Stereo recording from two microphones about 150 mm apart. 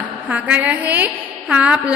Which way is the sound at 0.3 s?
10° right (ahead or behind).